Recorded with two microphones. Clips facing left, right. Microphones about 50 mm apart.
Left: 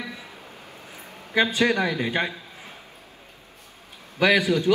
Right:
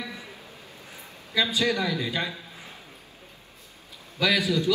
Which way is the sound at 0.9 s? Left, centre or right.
Left.